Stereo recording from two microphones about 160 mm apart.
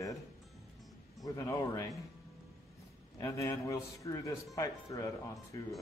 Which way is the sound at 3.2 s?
20° left (ahead or behind).